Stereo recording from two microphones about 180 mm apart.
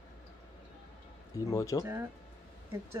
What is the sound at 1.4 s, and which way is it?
Speech, 15° left (ahead or behind).